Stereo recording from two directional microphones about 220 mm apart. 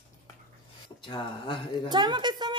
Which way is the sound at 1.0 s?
20° left (ahead or behind).